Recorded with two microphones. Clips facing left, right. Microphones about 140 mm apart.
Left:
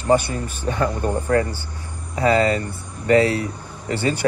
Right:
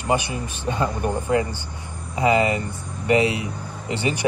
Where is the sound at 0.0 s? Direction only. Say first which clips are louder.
Left 5 dB; 15° right (ahead or behind).